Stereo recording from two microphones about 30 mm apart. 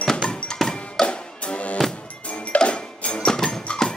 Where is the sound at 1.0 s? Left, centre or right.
Left.